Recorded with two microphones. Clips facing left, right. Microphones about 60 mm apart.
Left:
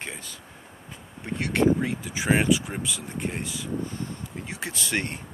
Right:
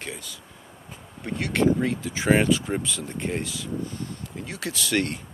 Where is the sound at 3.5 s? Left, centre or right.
Left.